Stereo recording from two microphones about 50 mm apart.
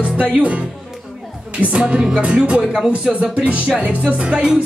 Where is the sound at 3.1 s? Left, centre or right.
Right.